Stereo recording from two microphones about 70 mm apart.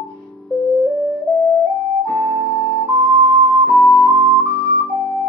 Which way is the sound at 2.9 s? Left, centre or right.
Right.